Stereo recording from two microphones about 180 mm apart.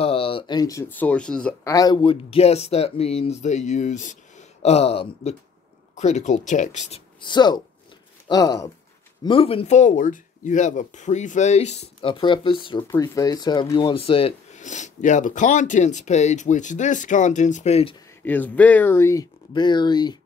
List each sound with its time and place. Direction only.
0.0 s speech: 30° left (ahead or behind); by 1.5 s 5° left (ahead or behind)
1.6 s speech: 20° left (ahead or behind); by 7.0 s 40° left (ahead or behind)
7.2 s speech: 25° left (ahead or behind)
18.2 s speech: 10° left (ahead or behind)